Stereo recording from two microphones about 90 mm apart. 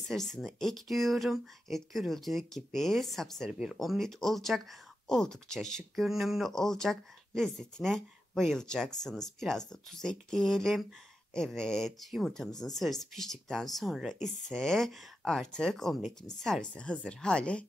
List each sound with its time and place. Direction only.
0.1 s speech: 5° left (ahead or behind)